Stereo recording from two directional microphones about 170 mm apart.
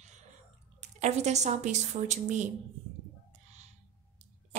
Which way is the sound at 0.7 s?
40° right (ahead or behind).